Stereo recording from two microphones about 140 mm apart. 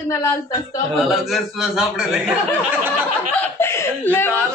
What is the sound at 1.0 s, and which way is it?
A man's voice, centre (ahead or behind).